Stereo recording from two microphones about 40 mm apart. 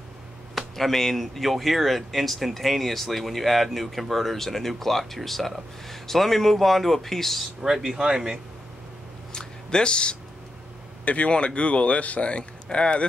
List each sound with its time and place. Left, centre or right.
0.6 s speech: centre
7.8 s speech: centre
9.3 s a sound: centre
11.1 s speech: left